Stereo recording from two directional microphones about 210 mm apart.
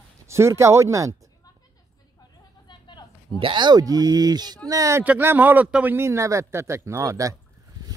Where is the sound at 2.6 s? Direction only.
20° left (ahead or behind).